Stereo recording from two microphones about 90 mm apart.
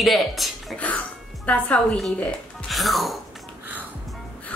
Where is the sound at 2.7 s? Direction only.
Centre (ahead or behind).